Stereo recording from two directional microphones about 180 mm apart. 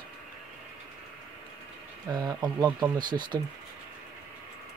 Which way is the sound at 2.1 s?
20° right (ahead or behind).